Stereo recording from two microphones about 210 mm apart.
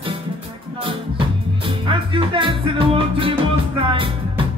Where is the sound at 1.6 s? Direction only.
25° right (ahead or behind).